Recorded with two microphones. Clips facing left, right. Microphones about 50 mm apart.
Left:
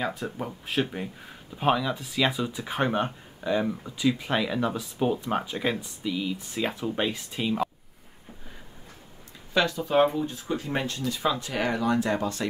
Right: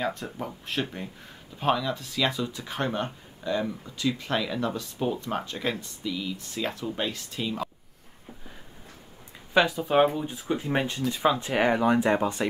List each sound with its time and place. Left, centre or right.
0.0 s speech: centre
9.5 s speech: centre